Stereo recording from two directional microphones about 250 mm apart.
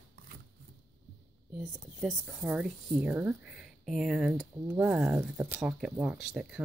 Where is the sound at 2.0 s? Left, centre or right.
Centre.